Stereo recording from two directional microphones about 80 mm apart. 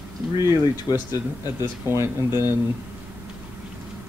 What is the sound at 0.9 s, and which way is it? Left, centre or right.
Speech, left.